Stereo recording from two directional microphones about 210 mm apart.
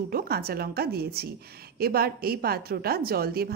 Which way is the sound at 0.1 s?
45° right (ahead or behind).